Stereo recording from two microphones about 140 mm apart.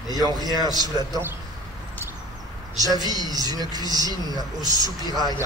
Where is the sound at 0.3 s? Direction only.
30° right (ahead or behind).